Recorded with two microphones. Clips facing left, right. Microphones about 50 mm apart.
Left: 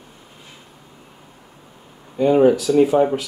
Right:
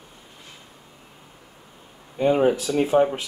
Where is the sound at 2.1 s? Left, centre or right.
Centre.